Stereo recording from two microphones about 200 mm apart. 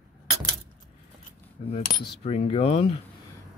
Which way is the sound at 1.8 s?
45° left (ahead or behind).